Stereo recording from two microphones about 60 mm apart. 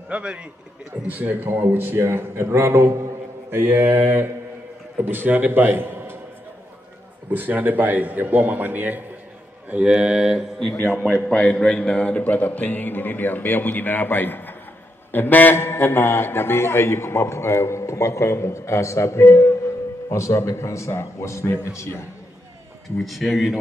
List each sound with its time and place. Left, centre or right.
0.1 s speech: centre
1.1 s a man's voice: right
5.0 s a man's voice: right
7.2 s a man's voice: right
9.8 s speech: centre
11.0 s a man's voice: centre; by 21.5 s left
22.9 s speech: centre